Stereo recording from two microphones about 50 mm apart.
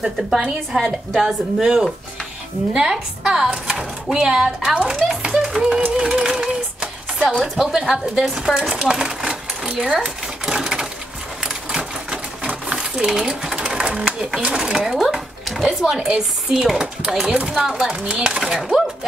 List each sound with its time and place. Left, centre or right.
0.0 s a woman's voice: centre
5.2 s rattle: centre
5.9 s a sound: centre
7.4 s a woman's voice: centre
8.2 s a sound: centre
11.4 s sewing machine: centre
14.4 s a woman's voice: centre
15.1 s a sound: centre
15.8 s a woman's voice: centre
18.0 s chopping: right
18.3 s a woman's voice: centre